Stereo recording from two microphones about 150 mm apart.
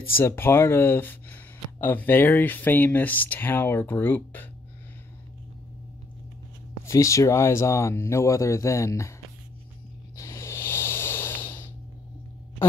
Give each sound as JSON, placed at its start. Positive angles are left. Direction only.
{"t": 0.2, "sound": "speech", "side_deg": 15}
{"t": 6.9, "sound": "speech", "side_deg": 20}
{"t": 10.1, "sound": "a sound", "side_deg": 20}